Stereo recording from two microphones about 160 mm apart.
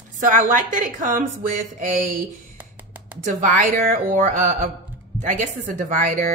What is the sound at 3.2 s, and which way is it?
Speech, 60° right (ahead or behind).